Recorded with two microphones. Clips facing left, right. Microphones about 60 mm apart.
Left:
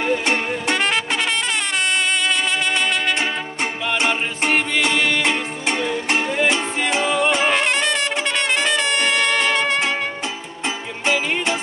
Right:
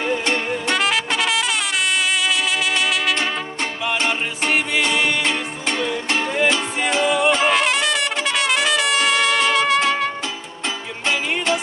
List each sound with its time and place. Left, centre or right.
0.0 s music: left
5.2 s music: centre
7.1 s music: centre
7.3 s trumpet: centre
11.1 s music: centre